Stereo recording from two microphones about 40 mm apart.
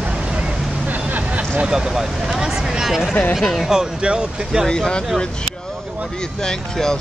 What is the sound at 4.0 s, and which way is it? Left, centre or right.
Speech, right.